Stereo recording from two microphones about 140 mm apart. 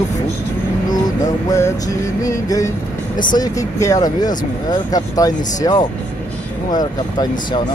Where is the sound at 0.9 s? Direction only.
25° left (ahead or behind).